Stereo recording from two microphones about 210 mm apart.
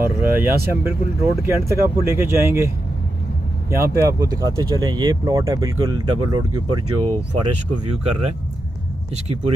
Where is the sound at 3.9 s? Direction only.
15° right (ahead or behind).